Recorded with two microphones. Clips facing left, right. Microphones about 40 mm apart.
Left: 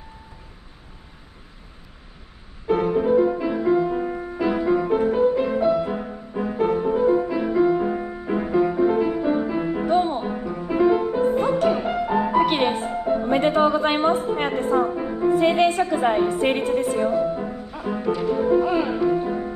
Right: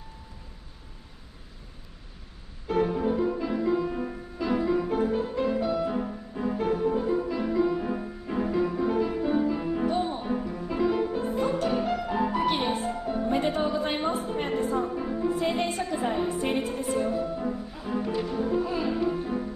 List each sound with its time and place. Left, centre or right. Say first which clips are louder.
2.6 s music: left 5 dB; left
9.8 s music: left 8 dB; left
12.4 s music: left 5 dB; left
12.9 s music: left 7 dB; left
13.3 s music: left 8 dB; left
14.3 s a sound: left 6 dB; left
15.0 s music: left 6 dB; left
15.3 s a woman's voice: left 9 dB; left
17.1 s music: left 6 dB; left
18.2 s speech: left 8 dB; left
18.6 s speech: left 8 dB; left
18.9 s music: left 6 dB; left